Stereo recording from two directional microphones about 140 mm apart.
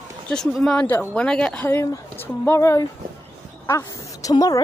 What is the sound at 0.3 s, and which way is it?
Speech, 5° left (ahead or behind).